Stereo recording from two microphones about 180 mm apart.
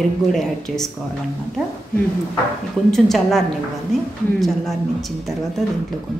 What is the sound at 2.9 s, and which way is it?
Speech, centre (ahead or behind).